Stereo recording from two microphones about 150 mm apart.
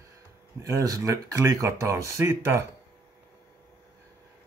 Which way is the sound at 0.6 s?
20° right (ahead or behind).